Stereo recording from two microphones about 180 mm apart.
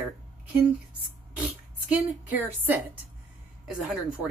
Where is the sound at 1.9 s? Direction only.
10° right (ahead or behind).